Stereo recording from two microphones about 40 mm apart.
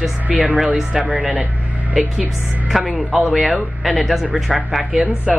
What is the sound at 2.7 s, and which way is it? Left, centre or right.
Speech, centre.